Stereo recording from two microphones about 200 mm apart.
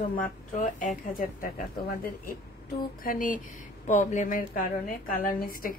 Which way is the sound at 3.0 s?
45° left (ahead or behind).